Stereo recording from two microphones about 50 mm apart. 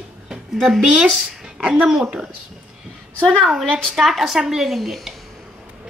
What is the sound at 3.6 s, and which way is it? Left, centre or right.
Speech, centre.